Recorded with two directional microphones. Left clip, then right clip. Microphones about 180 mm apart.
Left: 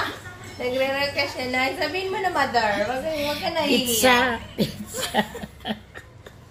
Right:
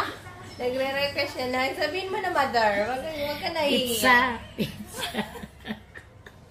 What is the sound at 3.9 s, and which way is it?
Female singing, 15° left (ahead or behind).